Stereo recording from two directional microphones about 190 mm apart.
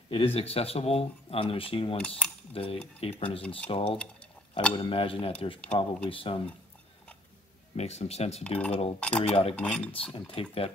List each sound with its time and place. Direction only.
0.1 s speech: 30° left (ahead or behind)
2.0 s cutlery: 5° left (ahead or behind)
2.5 s speech: 30° left (ahead or behind)
4.0 s a sound: 5° left (ahead or behind)
4.7 s speech: 25° left (ahead or behind)
7.7 s speech: 35° left (ahead or behind)
9.6 s cutlery: 5° left (ahead or behind)
9.9 s speech: 30° left (ahead or behind)